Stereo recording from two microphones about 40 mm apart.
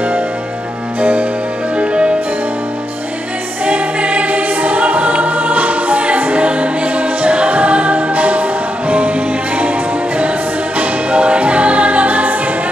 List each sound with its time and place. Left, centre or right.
1.8 s music: right
3.6 s choir: right
9.6 s music: right